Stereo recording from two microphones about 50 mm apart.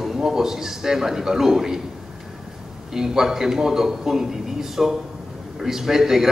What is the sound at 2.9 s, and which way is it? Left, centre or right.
Speech, centre.